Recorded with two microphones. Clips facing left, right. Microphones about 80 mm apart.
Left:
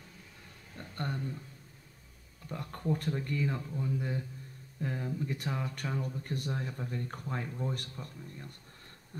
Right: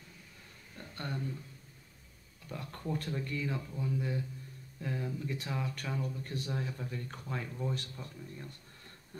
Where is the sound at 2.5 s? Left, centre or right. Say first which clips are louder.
Left 4 dB; left.